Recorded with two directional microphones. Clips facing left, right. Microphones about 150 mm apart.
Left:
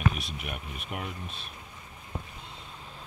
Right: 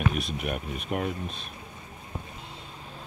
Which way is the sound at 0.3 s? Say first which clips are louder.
Right 7 dB; 40° right (ahead or behind).